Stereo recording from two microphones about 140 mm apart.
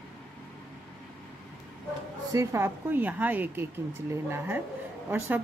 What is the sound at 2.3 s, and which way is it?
Speech, 20° right (ahead or behind).